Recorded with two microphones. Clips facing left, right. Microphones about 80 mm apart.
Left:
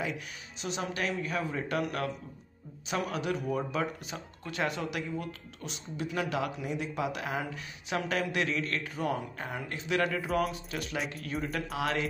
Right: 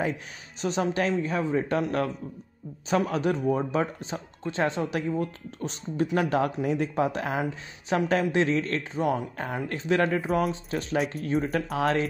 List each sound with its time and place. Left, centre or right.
0.0 s speech: right
9.7 s speech: right